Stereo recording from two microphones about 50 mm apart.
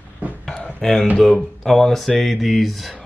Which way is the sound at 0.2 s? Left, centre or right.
Right.